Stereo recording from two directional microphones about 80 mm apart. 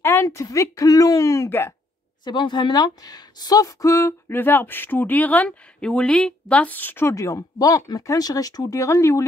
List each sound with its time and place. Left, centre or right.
0.0 s speech: left
2.2 s speech: left
7.1 s speech: left
7.5 s speech: left